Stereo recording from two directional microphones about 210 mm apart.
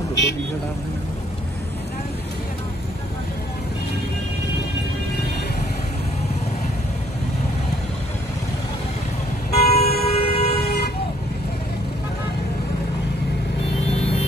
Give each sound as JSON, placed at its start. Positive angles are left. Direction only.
{"t": 9.5, "sound": "vehicle", "side_deg": 50}
{"t": 10.0, "sound": "vehicle", "side_deg": 30}